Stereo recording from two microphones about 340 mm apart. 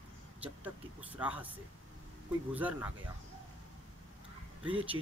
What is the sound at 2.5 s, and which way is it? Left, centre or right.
Speech, centre.